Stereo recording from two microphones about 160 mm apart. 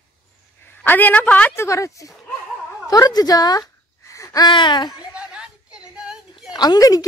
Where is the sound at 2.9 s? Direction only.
25° left (ahead or behind).